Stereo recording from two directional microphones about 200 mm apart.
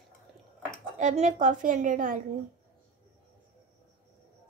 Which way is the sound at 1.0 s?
35° right (ahead or behind).